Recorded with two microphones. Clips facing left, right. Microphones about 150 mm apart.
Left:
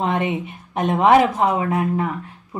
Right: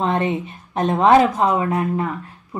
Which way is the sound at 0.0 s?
15° left (ahead or behind).